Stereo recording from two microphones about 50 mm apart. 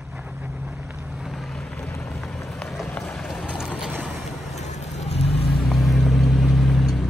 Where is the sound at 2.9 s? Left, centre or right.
Left.